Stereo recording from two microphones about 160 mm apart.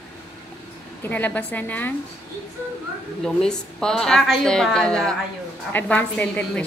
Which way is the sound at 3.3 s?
5° left (ahead or behind).